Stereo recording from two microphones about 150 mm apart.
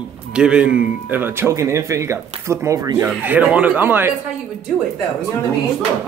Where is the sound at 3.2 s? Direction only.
10° right (ahead or behind).